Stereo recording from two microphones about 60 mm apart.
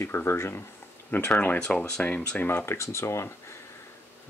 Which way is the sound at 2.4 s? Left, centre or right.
Left.